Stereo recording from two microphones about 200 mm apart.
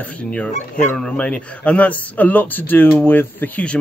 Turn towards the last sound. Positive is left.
turn(degrees=5)  # may be behind; listen again after turning